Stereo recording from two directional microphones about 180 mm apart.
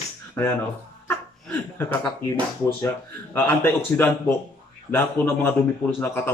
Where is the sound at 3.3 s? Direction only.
10° left (ahead or behind).